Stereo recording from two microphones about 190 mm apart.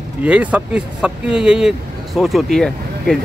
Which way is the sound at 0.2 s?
5° right (ahead or behind).